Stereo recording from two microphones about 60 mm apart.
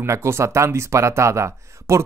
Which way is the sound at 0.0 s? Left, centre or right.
Right.